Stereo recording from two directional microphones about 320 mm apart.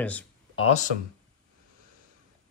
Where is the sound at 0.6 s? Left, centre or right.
Left.